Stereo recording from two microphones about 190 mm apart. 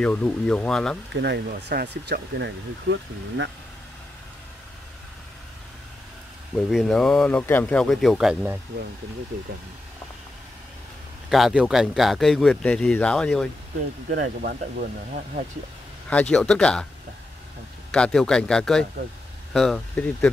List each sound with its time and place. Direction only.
0.0 s speech: 5° left (ahead or behind)
1.1 s speech: 60° right (ahead or behind)
6.5 s speech: centre (ahead or behind)
11.2 s speech: centre (ahead or behind)
14.1 s speech: 50° right (ahead or behind)
16.1 s speech: 5° left (ahead or behind)
17.9 s speech: 5° left (ahead or behind)